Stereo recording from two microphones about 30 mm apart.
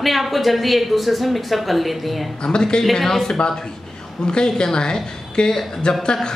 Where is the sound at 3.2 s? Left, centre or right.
Left.